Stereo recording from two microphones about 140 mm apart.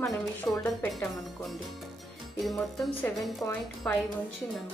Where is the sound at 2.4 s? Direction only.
Centre (ahead or behind).